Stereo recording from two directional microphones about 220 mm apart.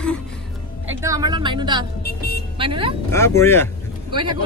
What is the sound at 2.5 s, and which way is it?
Speech, 25° right (ahead or behind).